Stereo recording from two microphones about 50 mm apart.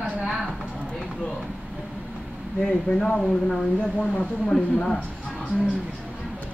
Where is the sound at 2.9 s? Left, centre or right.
Centre.